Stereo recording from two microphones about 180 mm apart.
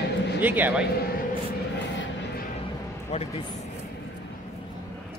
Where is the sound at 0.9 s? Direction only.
60° left (ahead or behind).